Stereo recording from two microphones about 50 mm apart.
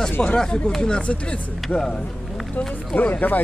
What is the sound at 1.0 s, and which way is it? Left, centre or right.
Speech, left.